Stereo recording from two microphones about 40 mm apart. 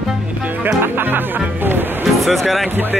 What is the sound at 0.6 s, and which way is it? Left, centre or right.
Speech, right.